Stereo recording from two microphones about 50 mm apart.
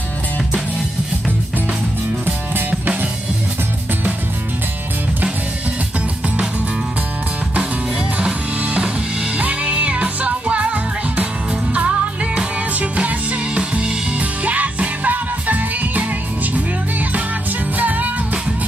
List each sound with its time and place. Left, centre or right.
8.6 s drum kit: right
9.4 s music: right
12.7 s music: right
14.4 s music: right
17.7 s music: right